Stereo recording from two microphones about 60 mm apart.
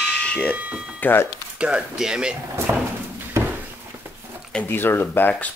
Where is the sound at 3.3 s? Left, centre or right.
Right.